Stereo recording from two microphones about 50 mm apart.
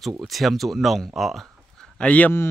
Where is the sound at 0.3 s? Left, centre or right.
Centre.